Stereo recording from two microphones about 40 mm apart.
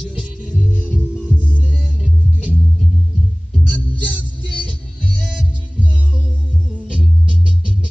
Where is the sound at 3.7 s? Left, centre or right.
Left.